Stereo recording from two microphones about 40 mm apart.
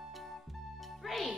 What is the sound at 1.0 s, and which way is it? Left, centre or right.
Music, centre.